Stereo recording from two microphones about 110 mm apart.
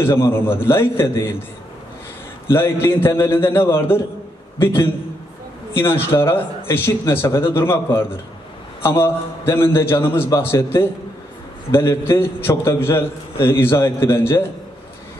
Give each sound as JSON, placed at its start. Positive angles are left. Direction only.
{"t": 0.0, "sound": "speech", "side_deg": 25}
{"t": 2.5, "sound": "speech", "side_deg": 20}
{"t": 5.8, "sound": "speech", "side_deg": 20}